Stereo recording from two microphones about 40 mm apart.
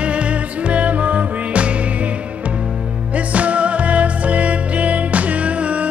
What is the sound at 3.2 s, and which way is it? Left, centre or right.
Music, right.